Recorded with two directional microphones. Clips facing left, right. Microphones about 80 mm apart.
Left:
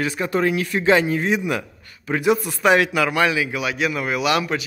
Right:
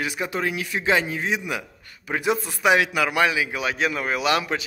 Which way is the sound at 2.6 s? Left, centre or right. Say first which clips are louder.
Left 2 dB; centre.